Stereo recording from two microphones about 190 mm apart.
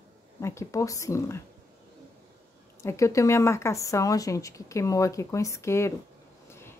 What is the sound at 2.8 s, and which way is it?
Speech, 15° left (ahead or behind).